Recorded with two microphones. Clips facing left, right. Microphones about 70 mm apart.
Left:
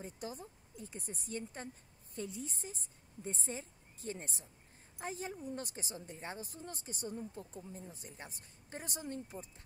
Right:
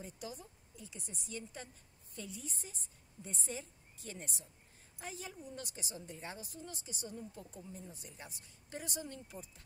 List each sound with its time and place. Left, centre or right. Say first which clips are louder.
0.0 s a woman's voice: left 2 dB; left